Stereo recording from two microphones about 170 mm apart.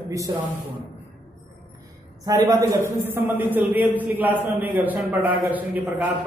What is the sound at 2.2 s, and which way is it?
A man's voice, 20° right (ahead or behind).